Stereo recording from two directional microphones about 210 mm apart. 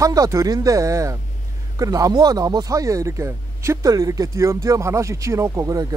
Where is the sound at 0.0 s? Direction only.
15° right (ahead or behind).